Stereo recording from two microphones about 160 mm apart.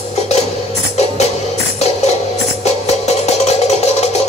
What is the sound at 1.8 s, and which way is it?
Music, 40° left (ahead or behind).